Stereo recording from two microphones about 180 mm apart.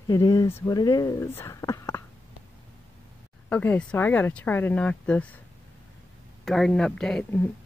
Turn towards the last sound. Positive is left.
turn(degrees=5)  # may be behind; listen again after turning